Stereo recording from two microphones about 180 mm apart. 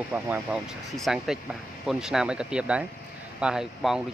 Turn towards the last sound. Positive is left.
turn(degrees=-5)  # may be behind; listen again after turning